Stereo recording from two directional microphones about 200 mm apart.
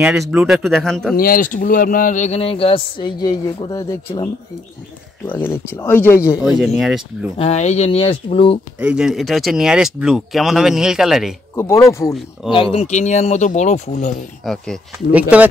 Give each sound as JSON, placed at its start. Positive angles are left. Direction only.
{"t": 0.0, "sound": "speech", "side_deg": -5}
{"t": 1.1, "sound": "speech", "side_deg": 45}
{"t": 5.4, "sound": "speech", "side_deg": 10}
{"t": 6.2, "sound": "speech", "side_deg": -5}
{"t": 7.3, "sound": "speech", "side_deg": 30}
{"t": 8.7, "sound": "speech", "side_deg": -5}
{"t": 11.5, "sound": "speech", "side_deg": 15}
{"t": 12.4, "sound": "speech", "side_deg": 25}
{"t": 14.4, "sound": "speech", "side_deg": 0}